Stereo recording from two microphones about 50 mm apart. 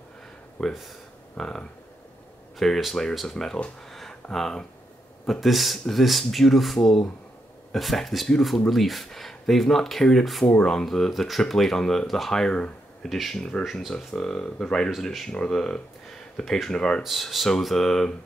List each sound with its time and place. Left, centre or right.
0.6 s speech: centre
3.9 s a sound: centre
5.2 s speech: centre
13.4 s speech: centre
13.7 s speech: centre
13.9 s speech: centre
15.0 s speech: centre
15.3 s speech: centre
17.0 s speech: centre